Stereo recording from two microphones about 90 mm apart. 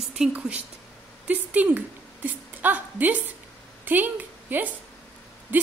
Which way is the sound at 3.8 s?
20° right (ahead or behind).